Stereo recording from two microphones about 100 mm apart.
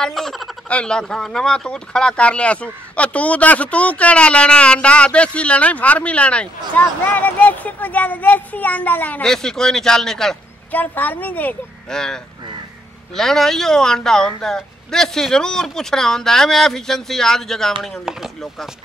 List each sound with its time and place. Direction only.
0.0 s speech: 5° left (ahead or behind)
9.2 s speech: 5° left (ahead or behind)
10.7 s speech: 15° left (ahead or behind)
11.9 s speech: 5° left (ahead or behind)